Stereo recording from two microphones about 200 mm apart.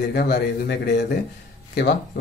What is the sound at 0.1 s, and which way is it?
A man's voice, 55° left (ahead or behind).